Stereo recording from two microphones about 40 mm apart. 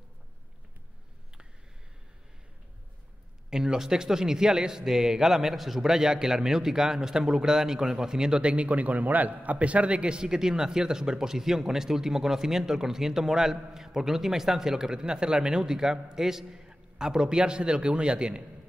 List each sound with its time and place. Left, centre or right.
3.4 s a man's voice: centre